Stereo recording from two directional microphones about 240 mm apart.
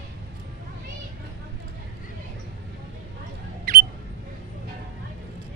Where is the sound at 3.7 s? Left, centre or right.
Right.